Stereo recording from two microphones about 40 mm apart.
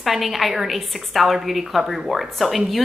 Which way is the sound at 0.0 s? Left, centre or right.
Centre.